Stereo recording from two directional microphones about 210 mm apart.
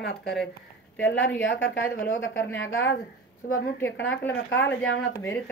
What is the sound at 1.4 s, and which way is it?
Speech, 60° left (ahead or behind).